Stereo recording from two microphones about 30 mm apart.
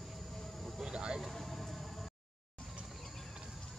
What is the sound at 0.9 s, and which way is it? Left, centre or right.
Vehicle, right.